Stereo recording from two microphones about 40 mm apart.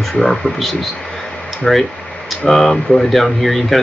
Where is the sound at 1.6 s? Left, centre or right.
Centre.